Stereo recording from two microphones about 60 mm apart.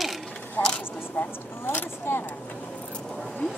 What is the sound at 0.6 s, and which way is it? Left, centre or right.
Speech, left.